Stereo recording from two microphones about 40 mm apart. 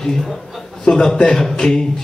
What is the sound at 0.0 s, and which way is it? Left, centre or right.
Speech, centre.